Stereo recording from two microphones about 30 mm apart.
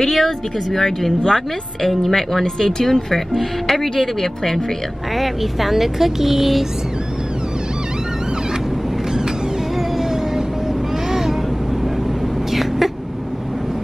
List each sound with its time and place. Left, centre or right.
0.0 s speech: centre
5.1 s speech: centre
11.1 s vehicle: centre
12.5 s vehicle: centre